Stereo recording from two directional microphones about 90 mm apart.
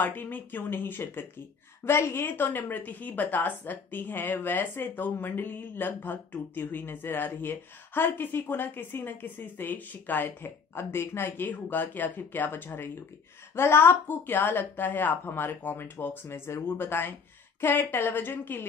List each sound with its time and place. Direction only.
0.0 s a woman's voice: 20° left (ahead or behind)